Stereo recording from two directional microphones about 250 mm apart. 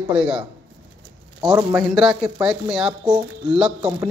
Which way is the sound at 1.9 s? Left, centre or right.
Centre.